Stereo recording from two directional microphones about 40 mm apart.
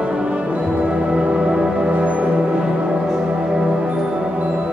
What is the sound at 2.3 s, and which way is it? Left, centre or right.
Music, right.